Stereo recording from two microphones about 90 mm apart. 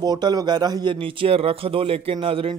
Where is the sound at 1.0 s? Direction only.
85° right.